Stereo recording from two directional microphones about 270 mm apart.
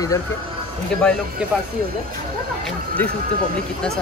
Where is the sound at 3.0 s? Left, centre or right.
Centre.